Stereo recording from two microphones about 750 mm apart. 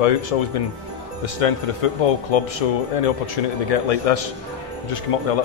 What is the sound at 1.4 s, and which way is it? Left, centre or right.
Speech, left.